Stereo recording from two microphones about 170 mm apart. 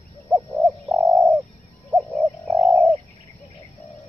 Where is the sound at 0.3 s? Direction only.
15° right (ahead or behind).